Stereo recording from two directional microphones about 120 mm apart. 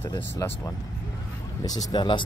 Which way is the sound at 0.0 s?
30° left (ahead or behind).